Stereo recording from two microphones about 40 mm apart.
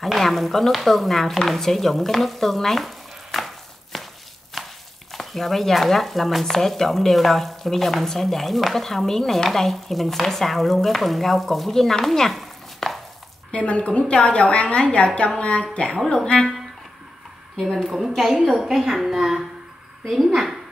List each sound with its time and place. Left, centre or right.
0.0 s speech: centre
1.5 s stir: centre
4.6 s a sound: centre
5.1 s speech: centre
6.4 s speech: centre
13.5 s a woman's voice: left
17.6 s speech: centre
18.5 s a woman's voice: centre